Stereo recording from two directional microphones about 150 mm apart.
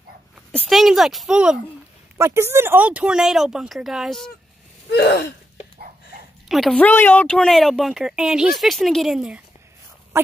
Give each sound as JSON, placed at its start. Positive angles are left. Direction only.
{"t": 0.5, "sound": "speech", "side_deg": 5}
{"t": 2.1, "sound": "speech", "side_deg": -15}
{"t": 4.9, "sound": "wheeze", "side_deg": 90}
{"t": 6.5, "sound": "speech", "side_deg": 5}